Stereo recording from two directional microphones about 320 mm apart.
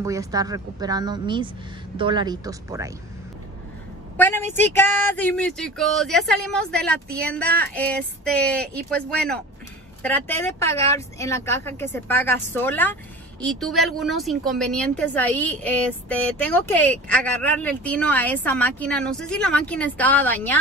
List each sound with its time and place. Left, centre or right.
0.0 s speech: centre
4.2 s a woman's voice: centre